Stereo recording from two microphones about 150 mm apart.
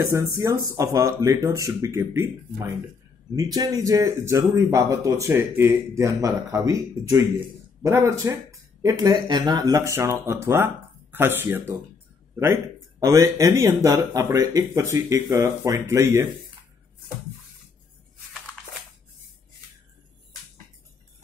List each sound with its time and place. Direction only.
0.0 s speech: 20° right (ahead or behind)
13.0 s speech: 20° right (ahead or behind)